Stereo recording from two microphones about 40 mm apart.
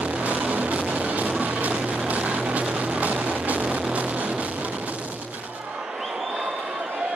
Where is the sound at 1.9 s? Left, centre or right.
Right.